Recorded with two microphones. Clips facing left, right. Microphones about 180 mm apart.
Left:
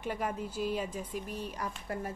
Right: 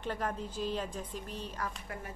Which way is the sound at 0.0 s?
10° left (ahead or behind).